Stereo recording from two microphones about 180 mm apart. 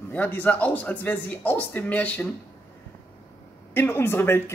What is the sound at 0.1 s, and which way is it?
Speech, 10° left (ahead or behind).